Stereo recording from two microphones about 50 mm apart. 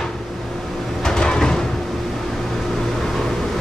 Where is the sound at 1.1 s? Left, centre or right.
Centre.